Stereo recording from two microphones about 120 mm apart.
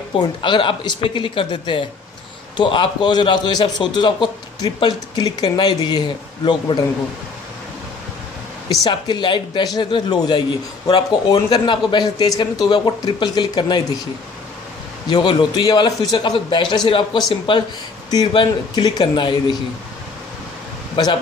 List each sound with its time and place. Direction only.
0.4 s a man's voice: 45° left (ahead or behind)
8.8 s a man's voice: 40° left (ahead or behind)
15.0 s a man's voice: 35° left (ahead or behind)
20.9 s speech: 40° left (ahead or behind)